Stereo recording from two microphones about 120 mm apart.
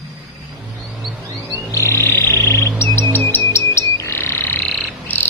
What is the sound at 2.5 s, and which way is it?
Bird, 25° left (ahead or behind).